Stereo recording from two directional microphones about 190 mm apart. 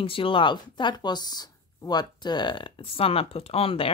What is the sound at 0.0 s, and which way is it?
Speech, 30° left (ahead or behind).